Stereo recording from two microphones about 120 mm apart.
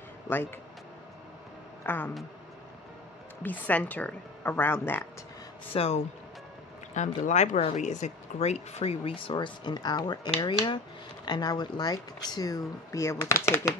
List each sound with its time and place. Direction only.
0.3 s speech: 20° left (ahead or behind)
1.8 s speech: 15° left (ahead or behind)
3.4 s a woman's voice: 15° left (ahead or behind)
5.7 s speech: 55° left (ahead or behind)
7.2 s speech: 80° left; by 13.7 s 25° left (ahead or behind)